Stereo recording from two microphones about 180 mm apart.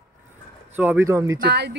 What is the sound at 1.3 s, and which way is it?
Speech, 65° right (ahead or behind).